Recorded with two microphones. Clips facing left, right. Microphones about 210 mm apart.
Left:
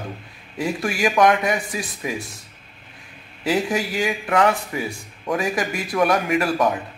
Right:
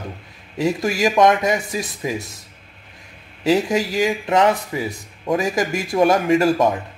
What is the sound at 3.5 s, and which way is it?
Speech, 20° right (ahead or behind).